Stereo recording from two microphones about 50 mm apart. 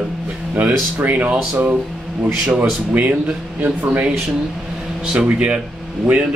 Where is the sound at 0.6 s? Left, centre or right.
Right.